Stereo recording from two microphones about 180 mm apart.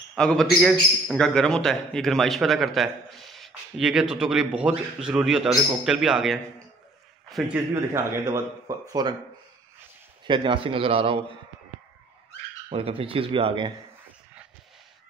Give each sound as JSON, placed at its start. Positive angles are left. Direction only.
{"t": 0.1, "sound": "a man's voice", "side_deg": 5}
{"t": 7.5, "sound": "a man's voice", "side_deg": -15}
{"t": 10.2, "sound": "a man's voice", "side_deg": -25}
{"t": 12.6, "sound": "speech", "side_deg": -30}